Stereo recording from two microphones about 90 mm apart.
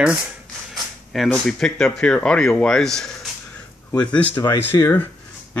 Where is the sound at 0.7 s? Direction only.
Centre (ahead or behind).